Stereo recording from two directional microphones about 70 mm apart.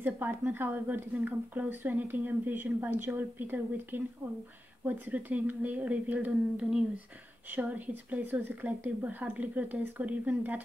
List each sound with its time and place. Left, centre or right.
0.0 s a woman's voice: right